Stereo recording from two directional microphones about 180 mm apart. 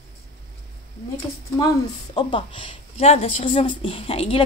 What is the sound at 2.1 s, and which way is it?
A woman's voice, 30° left (ahead or behind).